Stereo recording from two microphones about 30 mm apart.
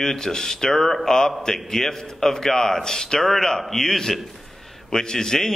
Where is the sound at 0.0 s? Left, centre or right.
Centre.